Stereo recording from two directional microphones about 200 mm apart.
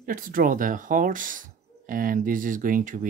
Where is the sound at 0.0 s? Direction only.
45° right (ahead or behind).